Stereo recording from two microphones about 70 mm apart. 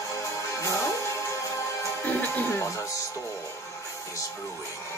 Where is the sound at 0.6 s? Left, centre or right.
Left.